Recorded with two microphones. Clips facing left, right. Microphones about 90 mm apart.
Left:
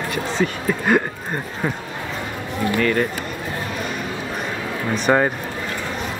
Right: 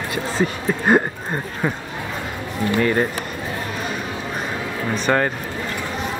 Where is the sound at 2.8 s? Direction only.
20° right (ahead or behind).